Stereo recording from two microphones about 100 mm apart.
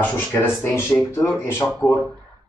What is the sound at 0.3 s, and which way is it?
Speech, 25° left (ahead or behind).